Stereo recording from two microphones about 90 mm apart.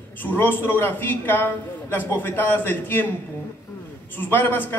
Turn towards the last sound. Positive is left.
turn(degrees=20)  # may be behind; listen again after turning